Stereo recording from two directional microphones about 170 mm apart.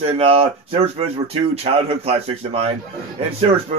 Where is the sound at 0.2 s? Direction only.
35° right (ahead or behind).